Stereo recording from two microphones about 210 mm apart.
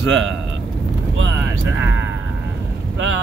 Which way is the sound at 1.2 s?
65° right (ahead or behind).